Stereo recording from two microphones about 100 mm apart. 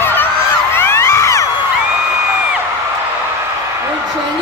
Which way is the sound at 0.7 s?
25° left (ahead or behind).